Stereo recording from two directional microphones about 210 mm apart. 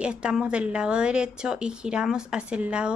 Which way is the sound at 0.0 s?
5° right (ahead or behind).